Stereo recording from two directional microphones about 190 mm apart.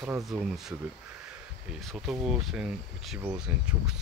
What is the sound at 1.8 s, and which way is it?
Speech, centre (ahead or behind).